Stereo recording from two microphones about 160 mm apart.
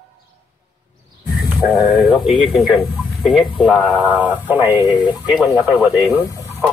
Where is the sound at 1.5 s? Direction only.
10° right (ahead or behind).